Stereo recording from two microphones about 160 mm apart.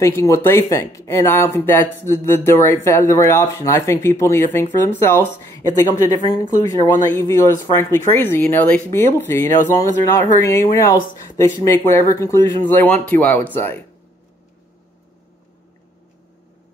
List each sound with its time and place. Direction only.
0.0 s speech: 15° left (ahead or behind)